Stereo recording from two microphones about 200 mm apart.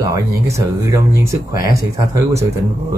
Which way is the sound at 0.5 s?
15° right (ahead or behind).